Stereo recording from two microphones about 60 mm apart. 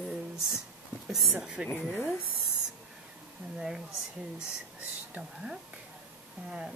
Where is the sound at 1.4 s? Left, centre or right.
Centre.